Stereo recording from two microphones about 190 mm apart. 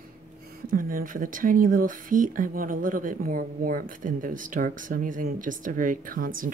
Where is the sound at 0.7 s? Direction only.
50° right (ahead or behind).